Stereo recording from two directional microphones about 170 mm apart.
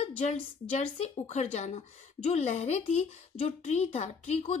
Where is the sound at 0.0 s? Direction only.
40° left (ahead or behind).